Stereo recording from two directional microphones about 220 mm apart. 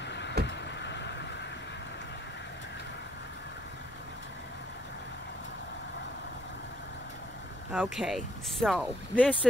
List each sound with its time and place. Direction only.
0.5 s vehicle: 50° left (ahead or behind)
7.7 s speech: 5° right (ahead or behind)